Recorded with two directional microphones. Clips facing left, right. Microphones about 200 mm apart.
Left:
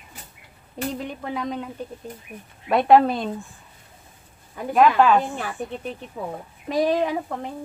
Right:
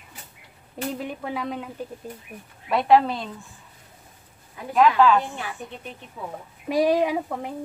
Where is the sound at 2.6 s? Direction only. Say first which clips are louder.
Left 3 dB; 50° left (ahead or behind).